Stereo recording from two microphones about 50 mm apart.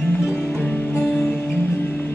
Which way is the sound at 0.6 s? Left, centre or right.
Left.